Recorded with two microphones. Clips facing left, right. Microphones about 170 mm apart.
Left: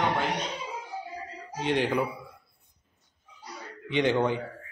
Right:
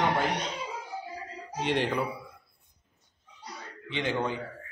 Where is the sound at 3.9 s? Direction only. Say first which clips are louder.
Left 6 dB; 20° left (ahead or behind).